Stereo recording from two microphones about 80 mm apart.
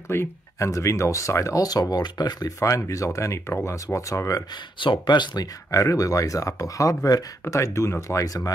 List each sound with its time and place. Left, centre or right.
0.1 s speech: left
2.6 s speech: left
4.7 s speech: left
7.4 s speech: left